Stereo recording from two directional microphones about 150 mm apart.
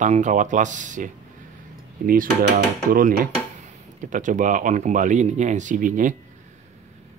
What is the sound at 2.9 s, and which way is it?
Speech, 70° right (ahead or behind).